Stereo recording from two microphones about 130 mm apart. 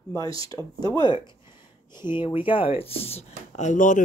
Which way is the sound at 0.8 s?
30° left (ahead or behind).